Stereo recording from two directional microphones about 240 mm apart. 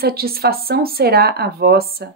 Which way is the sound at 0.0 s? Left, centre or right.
Right.